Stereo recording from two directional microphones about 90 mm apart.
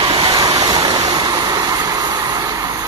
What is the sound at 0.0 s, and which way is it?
Vehicle, 65° right (ahead or behind).